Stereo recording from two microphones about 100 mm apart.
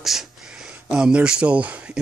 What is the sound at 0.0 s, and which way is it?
Speech, 5° right (ahead or behind).